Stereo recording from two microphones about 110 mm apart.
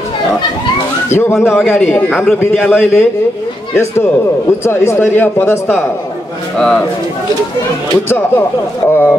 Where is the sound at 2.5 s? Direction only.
5° right (ahead or behind).